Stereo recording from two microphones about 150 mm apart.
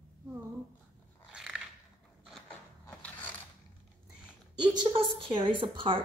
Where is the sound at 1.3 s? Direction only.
5° right (ahead or behind).